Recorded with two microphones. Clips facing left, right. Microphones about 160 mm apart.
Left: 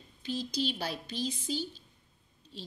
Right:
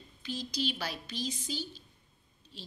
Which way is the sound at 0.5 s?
45° left (ahead or behind).